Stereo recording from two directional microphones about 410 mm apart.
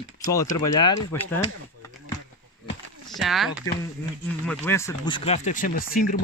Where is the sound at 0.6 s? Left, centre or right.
Centre.